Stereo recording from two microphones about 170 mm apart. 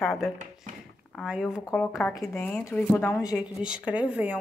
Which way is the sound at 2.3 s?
10° left (ahead or behind).